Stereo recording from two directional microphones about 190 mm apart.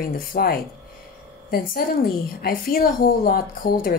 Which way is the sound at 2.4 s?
50° left (ahead or behind).